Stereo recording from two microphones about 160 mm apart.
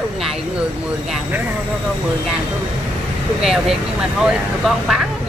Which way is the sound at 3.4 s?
Centre (ahead or behind).